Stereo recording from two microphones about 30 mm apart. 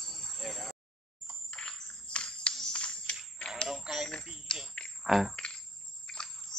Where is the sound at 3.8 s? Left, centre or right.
Right.